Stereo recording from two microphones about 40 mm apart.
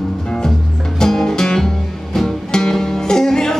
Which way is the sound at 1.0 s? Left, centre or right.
Centre.